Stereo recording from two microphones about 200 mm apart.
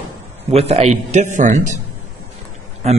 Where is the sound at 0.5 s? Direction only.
30° right (ahead or behind).